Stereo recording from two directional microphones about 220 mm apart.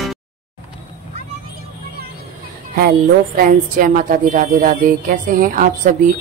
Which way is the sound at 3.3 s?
40° right (ahead or behind).